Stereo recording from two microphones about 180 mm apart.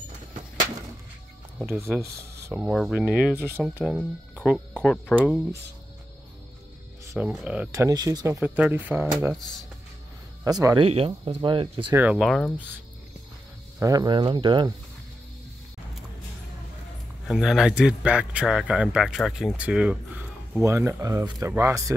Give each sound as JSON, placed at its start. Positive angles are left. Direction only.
{"t": 1.7, "sound": "speech", "side_deg": -15}
{"t": 2.6, "sound": "a man's voice", "side_deg": 0}
{"t": 3.8, "sound": "speech", "side_deg": 0}
{"t": 5.1, "sound": "speech", "side_deg": -10}
{"t": 7.1, "sound": "speech", "side_deg": -10}
{"t": 7.7, "sound": "speech", "side_deg": -20}
{"t": 8.4, "sound": "speech", "side_deg": -5}
{"t": 10.4, "sound": "speech", "side_deg": -20}
{"t": 10.9, "sound": "speech", "side_deg": -35}
{"t": 11.9, "sound": "a man's voice", "side_deg": -10}
{"t": 13.7, "sound": "speech", "side_deg": -20}
{"t": 17.3, "sound": "a man's voice", "side_deg": 0}